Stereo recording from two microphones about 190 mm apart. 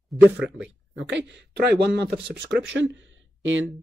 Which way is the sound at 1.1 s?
65° right (ahead or behind).